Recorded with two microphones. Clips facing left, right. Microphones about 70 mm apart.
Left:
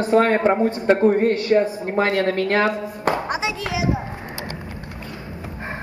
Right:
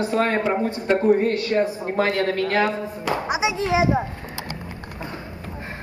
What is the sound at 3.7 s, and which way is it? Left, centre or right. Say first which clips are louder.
Speech: right 5 dB; right.